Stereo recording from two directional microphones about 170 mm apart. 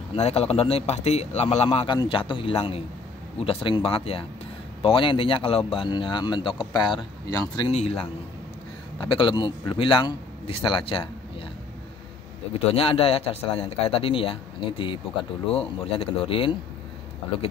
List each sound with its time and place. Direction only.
0.1 s a man's voice: 35° left (ahead or behind)
12.5 s a man's voice: 35° left (ahead or behind)